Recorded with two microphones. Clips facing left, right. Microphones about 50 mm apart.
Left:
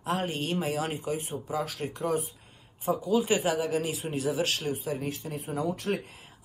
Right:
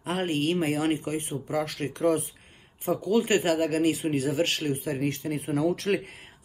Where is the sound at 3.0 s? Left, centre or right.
Right.